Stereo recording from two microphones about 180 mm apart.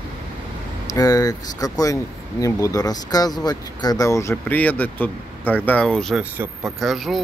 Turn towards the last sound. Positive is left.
turn(degrees=0)  # may be behind; listen again after turning